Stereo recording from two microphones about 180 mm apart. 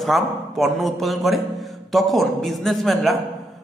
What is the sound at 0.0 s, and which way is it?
A woman's voice, centre (ahead or behind).